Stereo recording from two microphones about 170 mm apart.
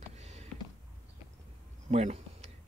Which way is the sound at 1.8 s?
40° right (ahead or behind).